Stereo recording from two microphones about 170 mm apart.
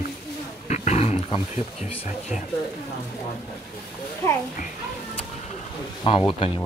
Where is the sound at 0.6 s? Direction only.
40° left (ahead or behind).